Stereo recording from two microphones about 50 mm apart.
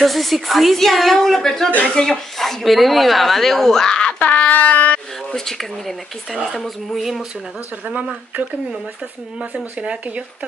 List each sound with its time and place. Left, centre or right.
0.0 s speech: centre
4.2 s a sound: left
5.3 s speech: centre
7.8 s speech: right
9.5 s speech: right